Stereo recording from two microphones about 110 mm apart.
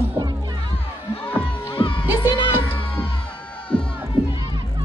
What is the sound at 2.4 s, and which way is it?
Music, 20° left (ahead or behind).